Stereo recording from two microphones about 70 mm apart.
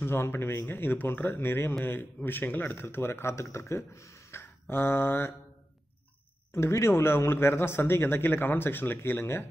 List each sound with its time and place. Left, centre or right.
0.0 s speech: left
4.4 s mantra: left
6.5 s speech: left